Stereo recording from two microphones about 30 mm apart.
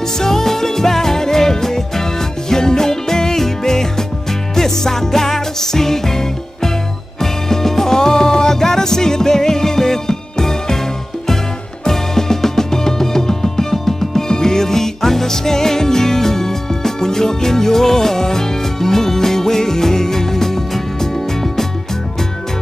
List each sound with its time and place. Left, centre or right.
0.2 s music: centre
11.8 s music: centre
14.3 s music: centre